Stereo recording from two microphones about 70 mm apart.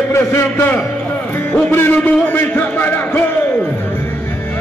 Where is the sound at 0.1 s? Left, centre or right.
Left.